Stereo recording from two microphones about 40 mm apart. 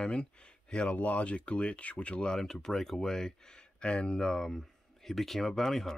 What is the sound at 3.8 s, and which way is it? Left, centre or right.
Speech, left.